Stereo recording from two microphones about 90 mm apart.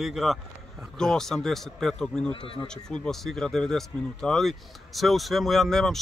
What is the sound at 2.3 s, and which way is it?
Speech, 75° left (ahead or behind).